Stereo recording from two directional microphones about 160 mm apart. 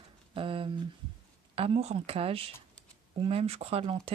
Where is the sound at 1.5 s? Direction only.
35° right (ahead or behind).